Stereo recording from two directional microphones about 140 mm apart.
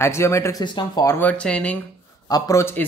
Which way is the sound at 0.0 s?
20° left (ahead or behind).